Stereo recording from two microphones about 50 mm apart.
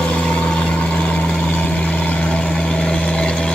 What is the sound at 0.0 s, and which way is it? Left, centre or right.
Vehicle, left.